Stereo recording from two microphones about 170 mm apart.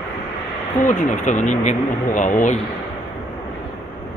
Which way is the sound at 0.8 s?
50° left (ahead or behind).